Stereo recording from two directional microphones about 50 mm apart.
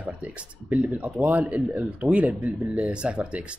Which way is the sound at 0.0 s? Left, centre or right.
Right.